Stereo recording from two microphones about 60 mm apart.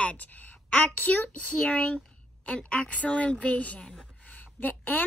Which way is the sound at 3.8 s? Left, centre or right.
Centre.